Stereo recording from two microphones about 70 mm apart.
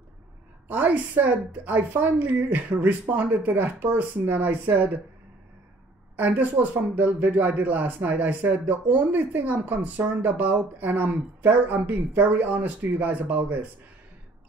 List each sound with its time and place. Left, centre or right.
0.7 s speech: right
6.1 s speech: right